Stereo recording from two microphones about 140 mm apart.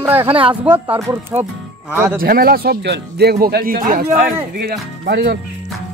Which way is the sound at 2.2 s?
90° right.